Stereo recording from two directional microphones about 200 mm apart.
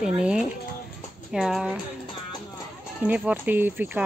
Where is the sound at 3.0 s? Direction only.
5° right (ahead or behind).